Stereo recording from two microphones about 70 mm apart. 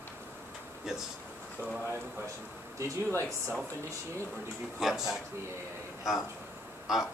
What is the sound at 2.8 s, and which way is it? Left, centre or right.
Speech, right.